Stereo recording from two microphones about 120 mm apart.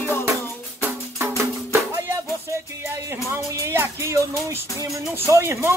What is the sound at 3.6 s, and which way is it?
Music, 25° right (ahead or behind).